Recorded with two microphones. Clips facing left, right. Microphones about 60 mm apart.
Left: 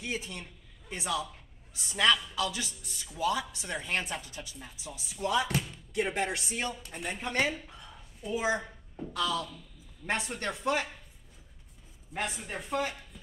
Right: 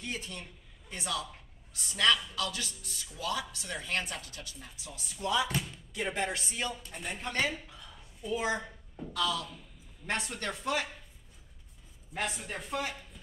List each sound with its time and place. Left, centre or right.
0.0 s a man's voice: centre
7.7 s doorbell: centre
9.2 s speech: centre
12.1 s speech: centre